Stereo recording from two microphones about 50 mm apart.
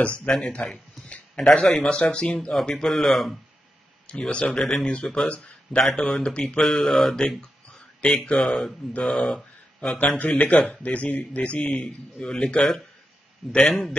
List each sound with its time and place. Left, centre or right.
0.2 s a man's voice: left
1.0 s a sound: left
1.9 s a man's voice: left; by 3.3 s centre
4.1 s a man's voice: left
8.0 s a man's voice: left
8.4 s speech: centre
9.9 s a man's voice: left
13.7 s speech: centre